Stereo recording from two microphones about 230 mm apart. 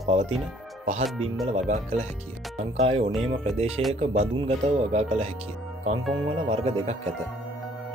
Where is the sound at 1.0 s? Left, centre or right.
Centre.